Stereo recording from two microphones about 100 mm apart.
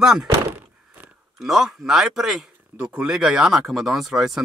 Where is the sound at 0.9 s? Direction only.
15° right (ahead or behind).